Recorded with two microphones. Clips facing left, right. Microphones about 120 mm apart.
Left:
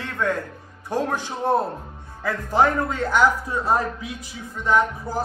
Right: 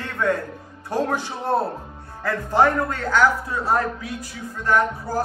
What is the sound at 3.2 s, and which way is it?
Speech, 25° left (ahead or behind).